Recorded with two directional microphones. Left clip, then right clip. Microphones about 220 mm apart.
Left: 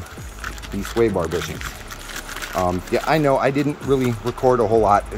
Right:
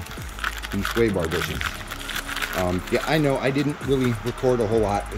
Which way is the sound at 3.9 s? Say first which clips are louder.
Left 4 dB; 35° left (ahead or behind).